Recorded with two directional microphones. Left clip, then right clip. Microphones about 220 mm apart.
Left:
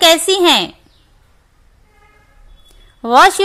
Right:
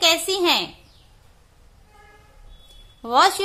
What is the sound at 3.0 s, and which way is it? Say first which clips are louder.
Speech: left 8 dB; 25° left (ahead or behind).